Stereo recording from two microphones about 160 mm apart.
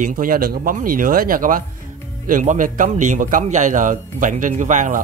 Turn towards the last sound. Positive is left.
turn(degrees=-50)  # may be behind; listen again after turning